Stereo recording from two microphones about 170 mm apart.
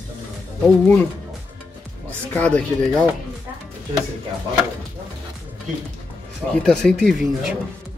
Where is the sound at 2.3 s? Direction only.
5° left (ahead or behind).